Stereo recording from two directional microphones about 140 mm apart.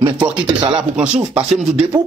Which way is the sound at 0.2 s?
35° right (ahead or behind).